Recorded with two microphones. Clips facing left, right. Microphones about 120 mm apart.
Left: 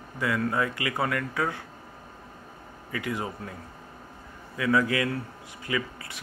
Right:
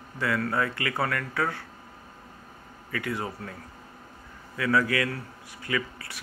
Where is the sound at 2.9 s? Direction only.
20° left (ahead or behind).